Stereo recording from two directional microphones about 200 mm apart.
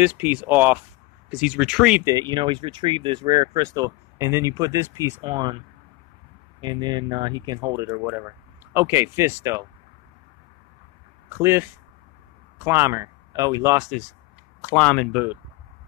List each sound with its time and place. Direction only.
0.0 s speech: 10° right (ahead or behind)
2.0 s speech: 20° right (ahead or behind)
6.6 s speech: 20° right (ahead or behind)
11.2 s speech: 10° right (ahead or behind)
14.8 s speech: 5° left (ahead or behind)